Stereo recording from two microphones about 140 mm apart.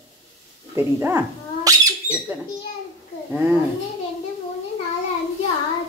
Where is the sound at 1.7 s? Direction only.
25° right (ahead or behind).